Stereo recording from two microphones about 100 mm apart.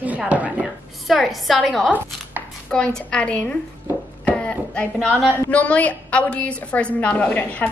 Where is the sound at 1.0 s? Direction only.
Centre (ahead or behind).